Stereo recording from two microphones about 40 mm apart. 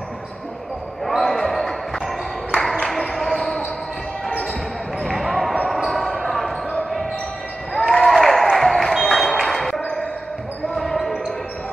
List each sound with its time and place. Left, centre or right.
1.0 s basketball bounce: centre
5.0 s basketball bounce: centre
7.7 s a sound: centre
10.8 s basketball bounce: centre